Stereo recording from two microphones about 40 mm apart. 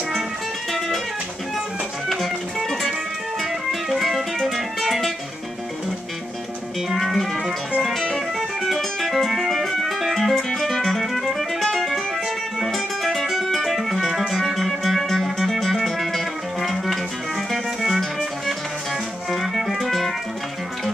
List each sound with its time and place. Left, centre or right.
0.7 s music: centre
3.9 s music: centre
6.9 s music: centre
19.5 s music: centre